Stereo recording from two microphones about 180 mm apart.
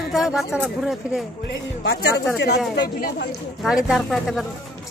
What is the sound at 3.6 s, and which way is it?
Speech, 5° right (ahead or behind).